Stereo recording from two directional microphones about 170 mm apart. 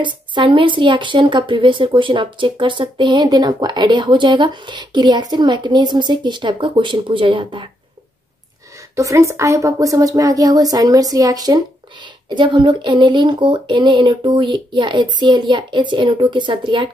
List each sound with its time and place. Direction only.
0.0 s a woman's voice: 30° right (ahead or behind)
8.9 s a woman's voice: 20° right (ahead or behind)